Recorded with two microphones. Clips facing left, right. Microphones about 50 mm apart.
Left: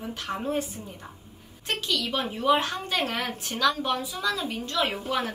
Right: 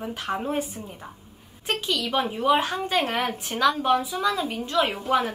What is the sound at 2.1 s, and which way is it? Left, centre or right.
A woman's voice, centre.